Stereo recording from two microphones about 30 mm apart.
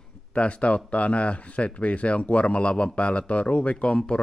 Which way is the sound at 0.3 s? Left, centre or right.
Left.